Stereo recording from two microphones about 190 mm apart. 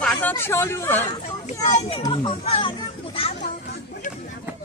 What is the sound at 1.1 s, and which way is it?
Speech, 35° left (ahead or behind).